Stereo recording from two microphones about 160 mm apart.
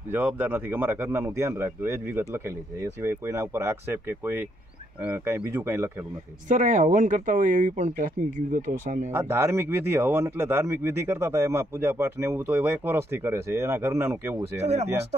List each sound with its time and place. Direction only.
0.1 s speech: 10° right (ahead or behind)
6.5 s speech: 55° right (ahead or behind)
9.1 s speech: 15° right (ahead or behind)
14.6 s speech: 45° right (ahead or behind)